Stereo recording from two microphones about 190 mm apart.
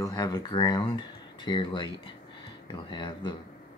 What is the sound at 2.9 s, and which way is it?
Speech, 25° left (ahead or behind).